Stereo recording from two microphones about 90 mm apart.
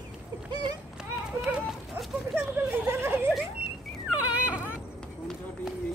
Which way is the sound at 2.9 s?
25° right (ahead or behind).